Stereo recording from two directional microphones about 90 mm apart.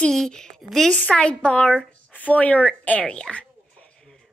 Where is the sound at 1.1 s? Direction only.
10° left (ahead or behind).